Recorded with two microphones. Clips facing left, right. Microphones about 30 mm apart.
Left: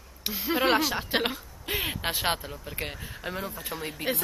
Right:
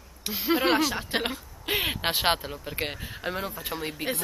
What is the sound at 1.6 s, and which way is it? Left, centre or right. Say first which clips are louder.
Speech: right 3 dB; right.